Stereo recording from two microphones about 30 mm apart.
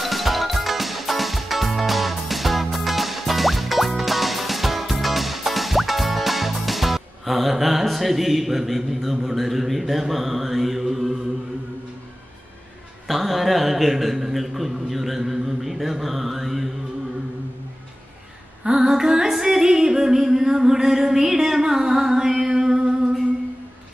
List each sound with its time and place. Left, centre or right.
0.0 s music: centre
13.1 s a man's voice: centre
18.6 s female singing: centre
19.3 s music: centre